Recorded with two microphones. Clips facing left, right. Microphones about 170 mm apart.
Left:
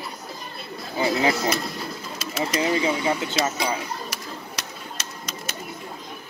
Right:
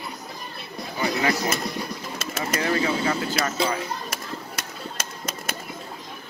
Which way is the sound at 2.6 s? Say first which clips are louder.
Even; 20° left (ahead or behind).